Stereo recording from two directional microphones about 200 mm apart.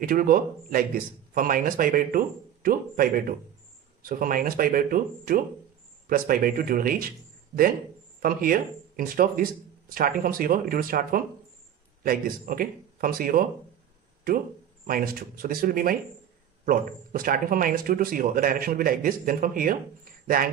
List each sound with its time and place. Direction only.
0.0 s speech: 45° right (ahead or behind)
8.2 s speech: 45° right (ahead or behind)
14.9 s speech: 45° right (ahead or behind)